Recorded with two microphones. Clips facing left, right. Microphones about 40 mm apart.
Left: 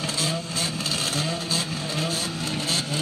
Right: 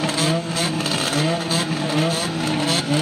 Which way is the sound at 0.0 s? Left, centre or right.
Right.